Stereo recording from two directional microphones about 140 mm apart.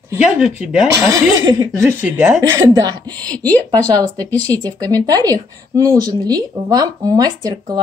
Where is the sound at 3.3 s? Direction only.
10° left (ahead or behind).